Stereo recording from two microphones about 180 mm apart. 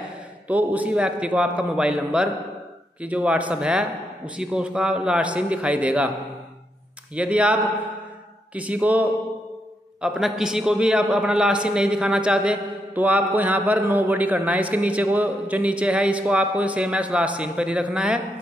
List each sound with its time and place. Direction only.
0.5 s a man's voice: 10° right (ahead or behind)
7.2 s a man's voice: 5° right (ahead or behind)
8.5 s a man's voice: 10° right (ahead or behind)
10.0 s a man's voice: 5° right (ahead or behind)